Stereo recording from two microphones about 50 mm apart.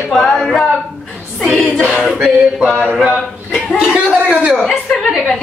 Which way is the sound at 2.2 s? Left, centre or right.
Centre.